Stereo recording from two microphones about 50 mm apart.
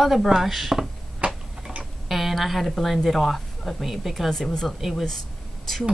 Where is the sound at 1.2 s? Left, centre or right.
Right.